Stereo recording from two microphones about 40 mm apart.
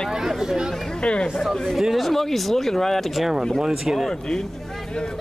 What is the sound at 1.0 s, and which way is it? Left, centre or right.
Speech, left.